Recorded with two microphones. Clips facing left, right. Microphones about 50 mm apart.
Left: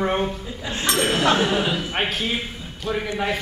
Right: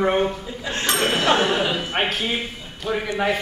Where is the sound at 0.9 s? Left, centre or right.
Right.